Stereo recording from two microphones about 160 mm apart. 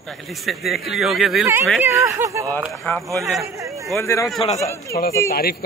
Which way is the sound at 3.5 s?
20° right (ahead or behind).